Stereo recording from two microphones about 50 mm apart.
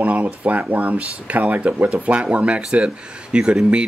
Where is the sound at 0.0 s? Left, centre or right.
Right.